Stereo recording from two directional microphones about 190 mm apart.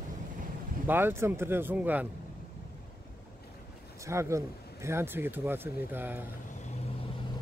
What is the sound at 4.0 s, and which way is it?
Speech, 15° right (ahead or behind).